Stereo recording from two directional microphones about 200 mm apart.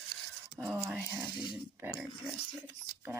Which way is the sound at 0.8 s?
10° right (ahead or behind).